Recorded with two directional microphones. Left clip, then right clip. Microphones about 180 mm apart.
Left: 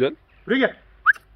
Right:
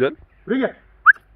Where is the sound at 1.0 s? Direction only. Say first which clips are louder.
Right 5 dB; 20° left (ahead or behind).